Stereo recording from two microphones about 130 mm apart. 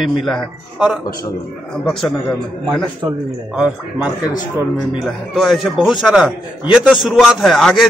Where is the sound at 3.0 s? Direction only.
35° right (ahead or behind).